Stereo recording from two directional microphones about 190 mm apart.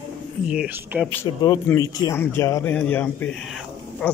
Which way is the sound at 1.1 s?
15° left (ahead or behind).